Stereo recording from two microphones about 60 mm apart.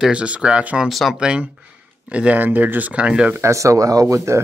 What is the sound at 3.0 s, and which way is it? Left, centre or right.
Speech, centre.